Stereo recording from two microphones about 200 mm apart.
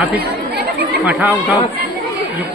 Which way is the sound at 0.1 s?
50° right (ahead or behind).